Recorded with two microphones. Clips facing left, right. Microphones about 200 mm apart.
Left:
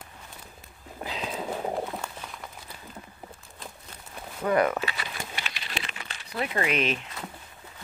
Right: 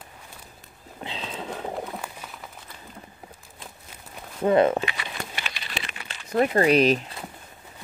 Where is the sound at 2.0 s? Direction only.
5° right (ahead or behind).